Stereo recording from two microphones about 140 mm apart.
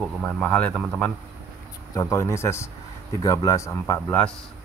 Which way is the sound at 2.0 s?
20° left (ahead or behind).